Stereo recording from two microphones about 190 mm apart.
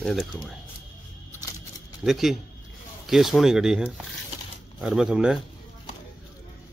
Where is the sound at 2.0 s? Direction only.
Centre (ahead or behind).